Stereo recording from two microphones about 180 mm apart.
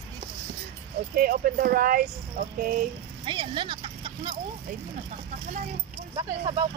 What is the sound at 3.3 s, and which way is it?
Speech, 30° right (ahead or behind).